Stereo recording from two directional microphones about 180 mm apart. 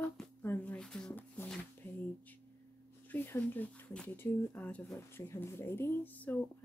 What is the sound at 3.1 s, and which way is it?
Speech, 10° left (ahead or behind).